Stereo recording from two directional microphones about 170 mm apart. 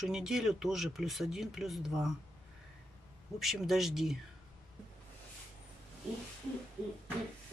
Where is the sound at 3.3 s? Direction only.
Centre (ahead or behind).